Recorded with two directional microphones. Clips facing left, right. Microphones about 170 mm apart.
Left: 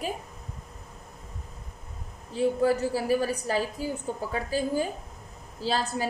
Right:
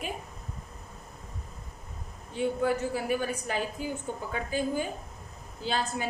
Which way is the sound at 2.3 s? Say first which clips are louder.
Left 4 dB; 35° left (ahead or behind).